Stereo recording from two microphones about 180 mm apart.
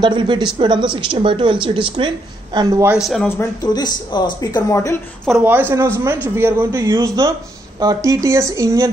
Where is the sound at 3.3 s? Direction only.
20° left (ahead or behind).